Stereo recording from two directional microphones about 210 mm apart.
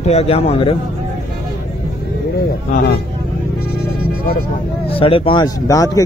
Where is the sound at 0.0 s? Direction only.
30° left (ahead or behind).